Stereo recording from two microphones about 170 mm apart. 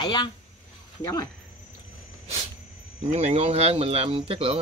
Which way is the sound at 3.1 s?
40° right (ahead or behind).